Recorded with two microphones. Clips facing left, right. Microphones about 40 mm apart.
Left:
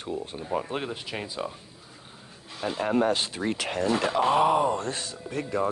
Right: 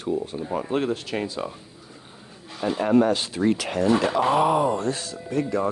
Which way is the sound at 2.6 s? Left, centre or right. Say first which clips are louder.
Right 4 dB; centre.